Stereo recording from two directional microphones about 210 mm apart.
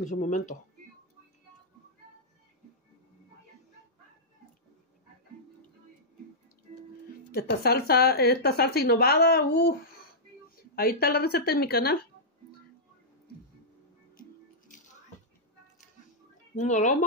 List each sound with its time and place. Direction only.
0.0 s speech: 35° left (ahead or behind)
7.3 s a woman's voice: 50° left (ahead or behind)
10.8 s a woman's voice: 45° left (ahead or behind)
16.5 s speech: 35° left (ahead or behind)